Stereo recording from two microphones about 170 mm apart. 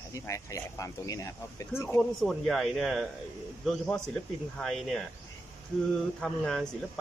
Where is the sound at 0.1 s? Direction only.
20° left (ahead or behind).